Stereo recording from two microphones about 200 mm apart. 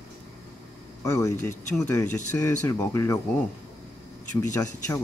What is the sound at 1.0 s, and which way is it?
Speech, 15° left (ahead or behind).